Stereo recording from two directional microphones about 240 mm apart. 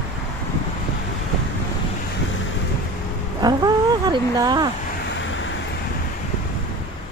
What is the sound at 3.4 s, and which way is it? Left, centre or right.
Speech, centre.